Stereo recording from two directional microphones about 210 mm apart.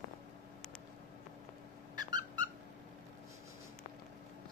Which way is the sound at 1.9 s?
20° right (ahead or behind).